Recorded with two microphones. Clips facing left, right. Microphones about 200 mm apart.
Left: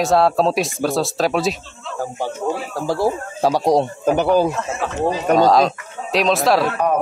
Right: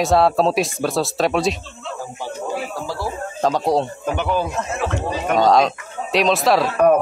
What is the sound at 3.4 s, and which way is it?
Speech, 10° left (ahead or behind).